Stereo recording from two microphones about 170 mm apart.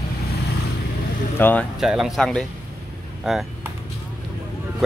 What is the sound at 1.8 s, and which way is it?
Speech, 5° right (ahead or behind).